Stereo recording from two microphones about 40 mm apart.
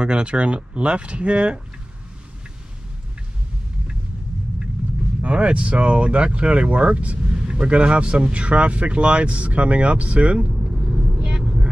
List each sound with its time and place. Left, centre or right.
0.0 s speech: right
5.2 s speech: right
7.2 s a man's voice: right
11.2 s vehicle: centre